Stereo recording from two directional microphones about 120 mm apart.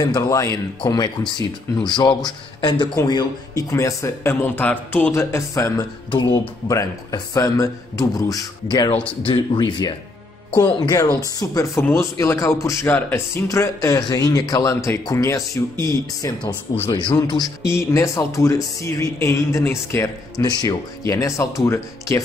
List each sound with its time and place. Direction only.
0.0 s speech: 30° left (ahead or behind)
10.6 s speech: 30° left (ahead or behind)